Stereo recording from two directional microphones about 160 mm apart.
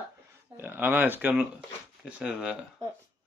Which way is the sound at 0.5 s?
10° right (ahead or behind).